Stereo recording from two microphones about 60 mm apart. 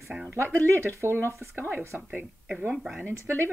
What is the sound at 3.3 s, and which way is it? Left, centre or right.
Speech, right.